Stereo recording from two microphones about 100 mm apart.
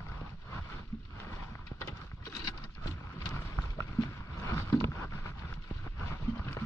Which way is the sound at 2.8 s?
30° left (ahead or behind).